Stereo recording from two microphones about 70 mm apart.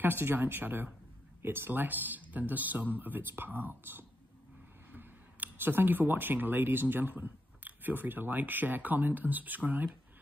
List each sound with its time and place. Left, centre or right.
0.0 s speech: right